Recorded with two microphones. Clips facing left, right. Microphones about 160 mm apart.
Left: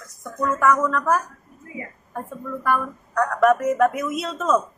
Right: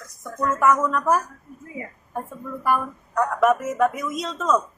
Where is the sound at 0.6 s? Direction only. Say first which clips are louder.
Even; 10° right (ahead or behind).